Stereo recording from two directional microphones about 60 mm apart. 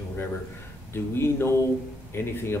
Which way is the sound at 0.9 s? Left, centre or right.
Left.